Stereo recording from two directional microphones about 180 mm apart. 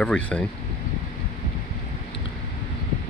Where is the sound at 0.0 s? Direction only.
5° left (ahead or behind).